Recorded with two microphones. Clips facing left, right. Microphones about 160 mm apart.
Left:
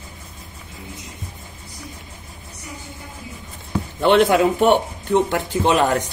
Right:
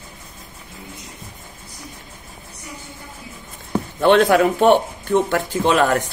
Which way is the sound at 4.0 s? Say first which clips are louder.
Right 1 dB; 15° left (ahead or behind).